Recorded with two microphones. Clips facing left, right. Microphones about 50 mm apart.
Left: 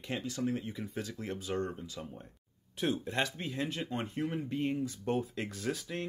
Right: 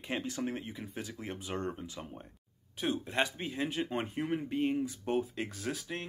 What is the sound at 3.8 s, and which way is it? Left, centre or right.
Speech, right.